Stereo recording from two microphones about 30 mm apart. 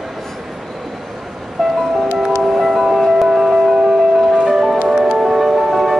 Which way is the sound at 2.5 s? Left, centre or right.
Centre.